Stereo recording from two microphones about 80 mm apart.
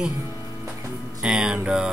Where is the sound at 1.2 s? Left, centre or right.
Centre.